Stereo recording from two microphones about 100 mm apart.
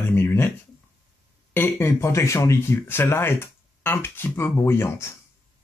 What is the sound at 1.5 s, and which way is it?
Speech, 25° left (ahead or behind).